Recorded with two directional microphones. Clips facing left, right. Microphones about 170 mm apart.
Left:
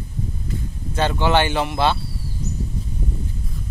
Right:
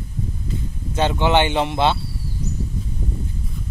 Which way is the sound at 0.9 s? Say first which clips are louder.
Right 1 dB; 20° right (ahead or behind).